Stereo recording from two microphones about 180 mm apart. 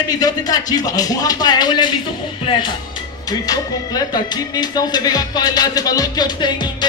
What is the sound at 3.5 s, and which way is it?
Music, 20° left (ahead or behind).